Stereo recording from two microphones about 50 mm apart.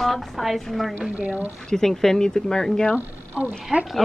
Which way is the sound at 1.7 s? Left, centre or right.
Centre.